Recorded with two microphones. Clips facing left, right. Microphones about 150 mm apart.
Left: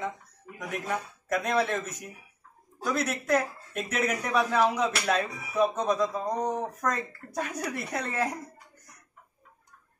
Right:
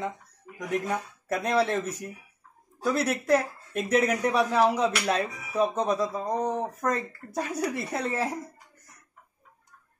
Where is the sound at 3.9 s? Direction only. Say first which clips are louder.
Right 4 dB; 30° right (ahead or behind).